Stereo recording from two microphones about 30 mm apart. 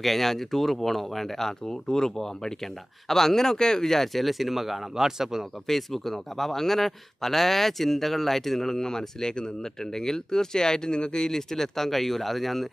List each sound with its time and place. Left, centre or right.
0.0 s a man's voice: centre; by 3.8 s left
3.8 s a man's voice: centre
5.7 s a man's voice: centre